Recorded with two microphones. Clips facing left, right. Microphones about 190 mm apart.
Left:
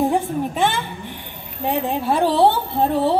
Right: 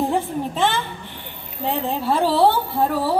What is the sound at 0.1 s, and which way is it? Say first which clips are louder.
A woman's voice: left 2 dB; 15° left (ahead or behind).